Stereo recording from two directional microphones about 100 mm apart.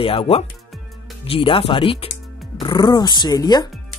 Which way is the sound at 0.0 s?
65° left (ahead or behind).